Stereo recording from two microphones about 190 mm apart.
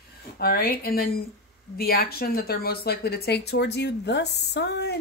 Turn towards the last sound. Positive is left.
turn(degrees=60)  # may be behind; listen again after turning